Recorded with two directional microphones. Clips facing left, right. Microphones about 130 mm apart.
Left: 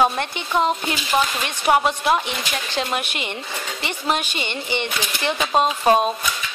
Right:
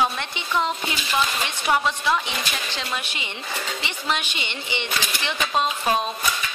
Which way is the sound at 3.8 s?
45° left (ahead or behind).